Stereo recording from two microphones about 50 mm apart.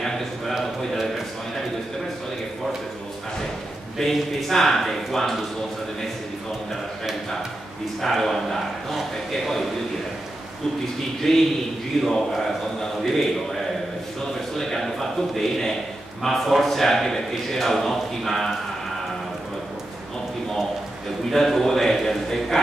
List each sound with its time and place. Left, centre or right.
0.0 s a sound: centre
4.0 s a man's voice: centre
8.0 s a man's voice: centre
11.3 s a man's voice: centre
14.6 s a sound: centre
16.2 s a man's voice: centre
21.3 s a man's voice: centre